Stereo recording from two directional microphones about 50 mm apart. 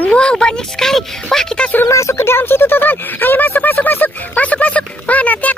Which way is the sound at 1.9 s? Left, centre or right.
Left.